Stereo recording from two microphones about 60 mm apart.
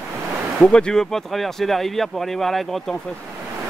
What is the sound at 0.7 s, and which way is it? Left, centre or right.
Speech, centre.